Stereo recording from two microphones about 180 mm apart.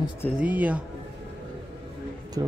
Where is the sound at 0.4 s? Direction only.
10° right (ahead or behind).